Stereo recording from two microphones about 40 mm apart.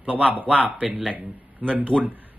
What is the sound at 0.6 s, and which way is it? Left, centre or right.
Speech, right.